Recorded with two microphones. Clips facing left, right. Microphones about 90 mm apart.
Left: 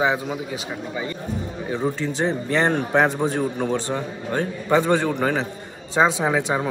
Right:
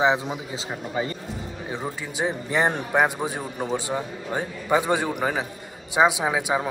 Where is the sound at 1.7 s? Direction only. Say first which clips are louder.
Left 8 dB; 10° right (ahead or behind).